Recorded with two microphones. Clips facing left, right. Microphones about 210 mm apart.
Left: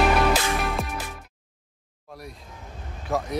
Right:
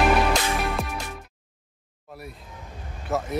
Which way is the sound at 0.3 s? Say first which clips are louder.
Even; 5° left (ahead or behind).